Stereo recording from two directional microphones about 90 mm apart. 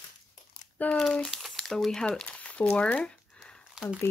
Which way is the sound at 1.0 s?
Centre (ahead or behind).